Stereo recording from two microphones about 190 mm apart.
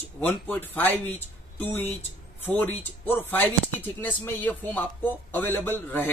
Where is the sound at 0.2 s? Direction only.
10° left (ahead or behind).